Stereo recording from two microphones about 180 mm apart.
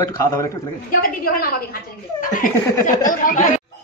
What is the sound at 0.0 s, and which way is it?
Speech, 15° left (ahead or behind).